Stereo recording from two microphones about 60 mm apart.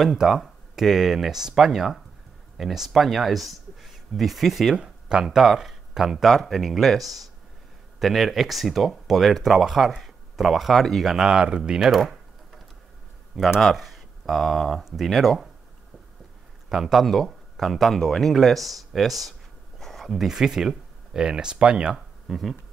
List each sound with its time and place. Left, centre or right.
0.0 s speech: centre
11.2 s speech: centre
11.8 s speech: centre
13.6 s speech: centre
16.6 s speech: centre
21.9 s speech: centre